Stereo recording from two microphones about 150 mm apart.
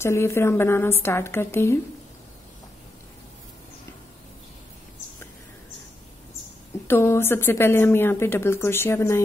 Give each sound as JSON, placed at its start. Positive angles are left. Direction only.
{"t": 0.0, "sound": "a woman's voice", "side_deg": 15}
{"t": 6.9, "sound": "a woman's voice", "side_deg": 15}